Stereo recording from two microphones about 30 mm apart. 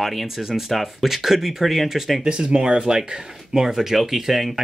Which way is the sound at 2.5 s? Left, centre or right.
Right.